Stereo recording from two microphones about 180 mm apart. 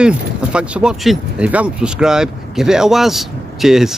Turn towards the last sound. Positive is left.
turn(degrees=0)  # may be behind; listen again after turning